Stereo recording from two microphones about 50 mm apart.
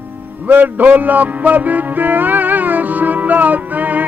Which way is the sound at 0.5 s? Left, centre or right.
Right.